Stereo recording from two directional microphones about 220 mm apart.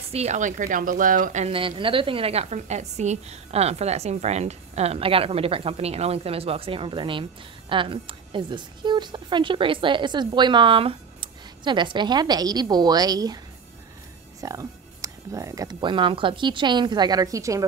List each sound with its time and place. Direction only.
0.1 s a woman's voice: 30° right (ahead or behind)
14.4 s a woman's voice: 15° right (ahead or behind)